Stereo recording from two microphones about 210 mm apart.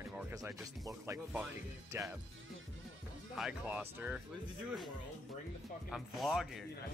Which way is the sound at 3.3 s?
5° right (ahead or behind).